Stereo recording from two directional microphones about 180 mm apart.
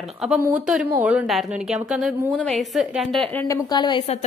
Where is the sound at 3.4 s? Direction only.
20° left (ahead or behind).